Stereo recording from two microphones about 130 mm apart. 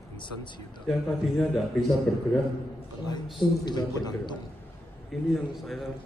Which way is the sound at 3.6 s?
35° left (ahead or behind).